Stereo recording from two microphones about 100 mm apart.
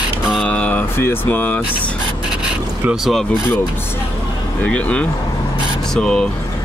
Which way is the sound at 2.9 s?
Centre (ahead or behind).